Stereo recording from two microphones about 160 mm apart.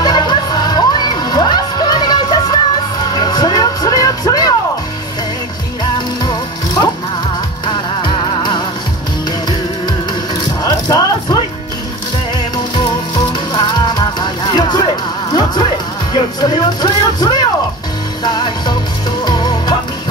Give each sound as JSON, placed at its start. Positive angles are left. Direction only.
{"t": 0.0, "sound": "music", "side_deg": 25}
{"t": 5.9, "sound": "music", "side_deg": 25}
{"t": 10.6, "sound": "music", "side_deg": 25}
{"t": 13.6, "sound": "music", "side_deg": 25}